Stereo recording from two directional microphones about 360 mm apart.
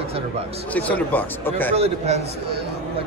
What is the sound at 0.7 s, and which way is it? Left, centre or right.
A man's voice, centre.